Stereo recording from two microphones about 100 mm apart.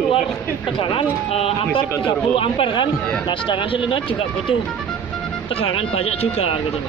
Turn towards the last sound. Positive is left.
turn(degrees=85)